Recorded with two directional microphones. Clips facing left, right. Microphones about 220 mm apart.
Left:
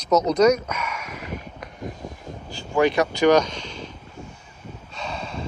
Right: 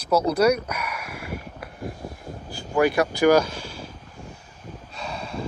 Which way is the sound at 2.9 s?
10° right (ahead or behind).